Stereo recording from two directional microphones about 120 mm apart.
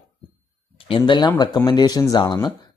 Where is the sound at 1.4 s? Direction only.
35° left (ahead or behind).